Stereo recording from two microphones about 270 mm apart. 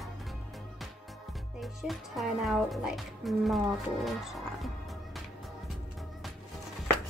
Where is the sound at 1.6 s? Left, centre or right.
Centre.